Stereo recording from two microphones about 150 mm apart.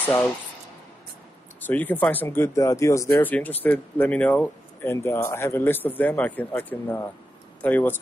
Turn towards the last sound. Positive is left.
turn(degrees=10)  # may be behind; listen again after turning